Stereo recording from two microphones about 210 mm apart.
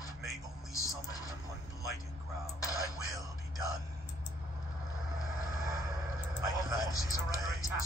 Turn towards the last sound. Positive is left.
turn(degrees=-15)  # may be behind; listen again after turning